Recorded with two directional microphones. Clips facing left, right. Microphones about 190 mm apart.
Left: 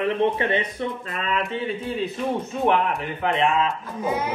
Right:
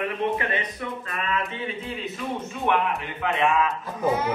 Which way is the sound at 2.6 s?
35° left (ahead or behind).